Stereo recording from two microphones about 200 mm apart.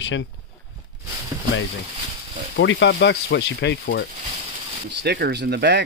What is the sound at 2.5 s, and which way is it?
Speech, 65° left (ahead or behind).